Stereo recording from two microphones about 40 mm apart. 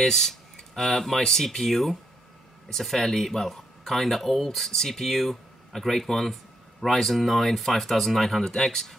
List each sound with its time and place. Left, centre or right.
0.0 s speech: centre